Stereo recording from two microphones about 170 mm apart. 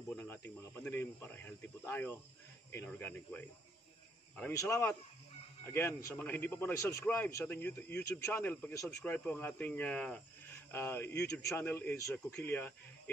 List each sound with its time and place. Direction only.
0.1 s a man's voice: 10° left (ahead or behind)